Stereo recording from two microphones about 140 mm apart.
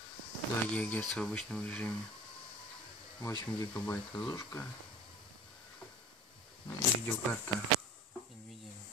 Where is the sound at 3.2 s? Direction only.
20° left (ahead or behind).